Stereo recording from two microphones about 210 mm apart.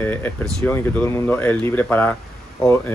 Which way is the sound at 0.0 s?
10° left (ahead or behind).